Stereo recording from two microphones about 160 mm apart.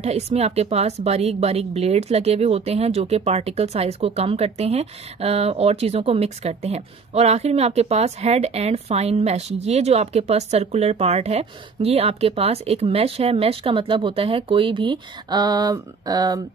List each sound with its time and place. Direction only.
0.0 s speech: 40° right (ahead or behind); by 16.3 s 25° right (ahead or behind)